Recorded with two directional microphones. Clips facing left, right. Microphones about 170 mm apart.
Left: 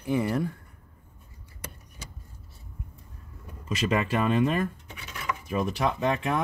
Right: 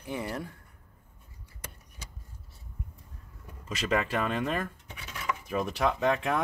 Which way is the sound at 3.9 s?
10° left (ahead or behind).